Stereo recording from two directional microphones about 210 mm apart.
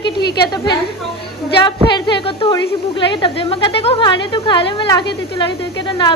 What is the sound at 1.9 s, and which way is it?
Speech, 20° left (ahead or behind).